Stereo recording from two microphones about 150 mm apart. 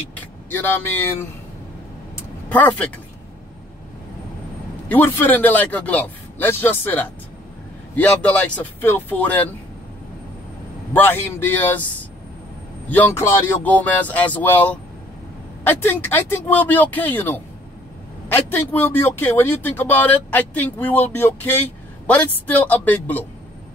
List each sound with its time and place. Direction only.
0.1 s speech: 10° left (ahead or behind)
2.5 s speech: 10° left (ahead or behind)
4.8 s speech: 15° left (ahead or behind)
10.9 s speech: 15° left (ahead or behind)
12.9 s speech: 15° left (ahead or behind)